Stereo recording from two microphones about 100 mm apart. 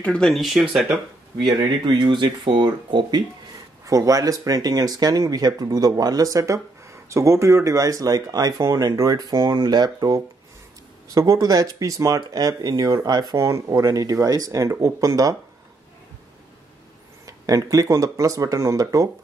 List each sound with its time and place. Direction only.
0.0 s speech: 10° left (ahead or behind)
1.4 s speech: 50° right (ahead or behind)
3.8 s speech: 35° right (ahead or behind)
17.3 s speech: 35° right (ahead or behind)